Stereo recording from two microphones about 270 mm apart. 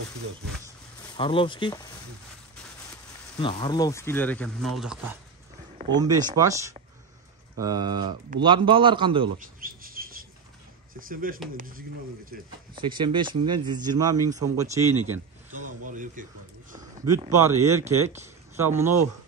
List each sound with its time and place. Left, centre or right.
1.1 s speech: centre
3.3 s speech: centre
5.8 s speech: centre
9.6 s bird: right
11.0 s speech: right
12.7 s speech: centre
15.8 s a sound: right
17.0 s speech: centre